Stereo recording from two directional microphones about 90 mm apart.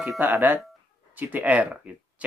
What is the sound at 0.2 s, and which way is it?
Speech, 20° right (ahead or behind).